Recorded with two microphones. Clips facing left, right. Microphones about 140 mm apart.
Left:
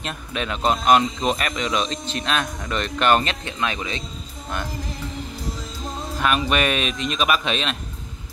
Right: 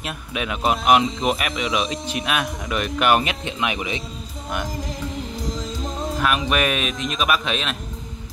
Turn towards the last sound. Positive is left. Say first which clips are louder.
# even
turn(degrees=0)  # may be behind; listen again after turning